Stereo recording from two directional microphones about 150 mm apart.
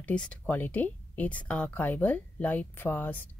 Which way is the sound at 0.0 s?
5° left (ahead or behind).